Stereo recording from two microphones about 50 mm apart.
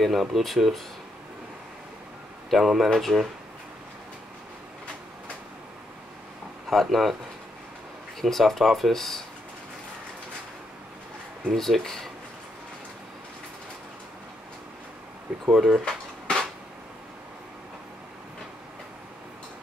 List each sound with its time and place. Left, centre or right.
0.0 s speech: centre
2.5 s speech: centre
2.9 s speech: centre
6.7 s speech: centre
8.2 s speech: centre
11.5 s speech: centre
15.5 s speech: centre
16.3 s a sound: centre